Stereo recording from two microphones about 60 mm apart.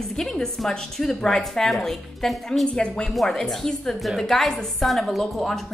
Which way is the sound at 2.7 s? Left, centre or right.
Centre.